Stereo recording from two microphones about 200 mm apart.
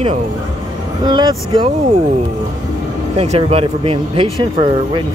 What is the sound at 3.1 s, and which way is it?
Speech, 30° right (ahead or behind).